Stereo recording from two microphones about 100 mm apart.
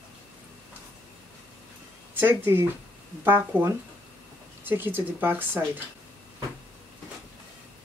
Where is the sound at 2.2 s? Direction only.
25° right (ahead or behind).